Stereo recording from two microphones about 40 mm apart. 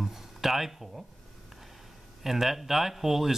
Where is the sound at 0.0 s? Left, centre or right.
Centre.